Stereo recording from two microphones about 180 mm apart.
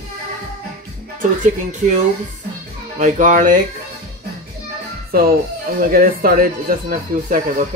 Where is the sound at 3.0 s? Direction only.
45° right (ahead or behind).